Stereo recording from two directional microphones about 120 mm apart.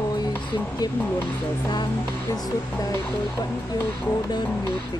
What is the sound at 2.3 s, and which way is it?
Music, 30° left (ahead or behind).